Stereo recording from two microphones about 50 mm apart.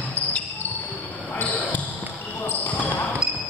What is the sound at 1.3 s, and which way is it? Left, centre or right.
Basketball bounce, left.